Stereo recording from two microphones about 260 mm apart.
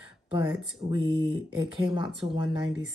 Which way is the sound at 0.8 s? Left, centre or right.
Right.